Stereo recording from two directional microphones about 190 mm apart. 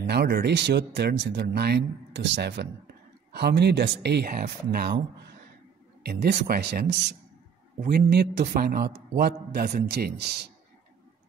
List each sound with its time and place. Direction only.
0.0 s speech: 60° right (ahead or behind)
6.0 s speech: 60° right (ahead or behind)